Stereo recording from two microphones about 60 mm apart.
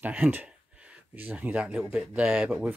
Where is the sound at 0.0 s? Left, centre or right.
Right.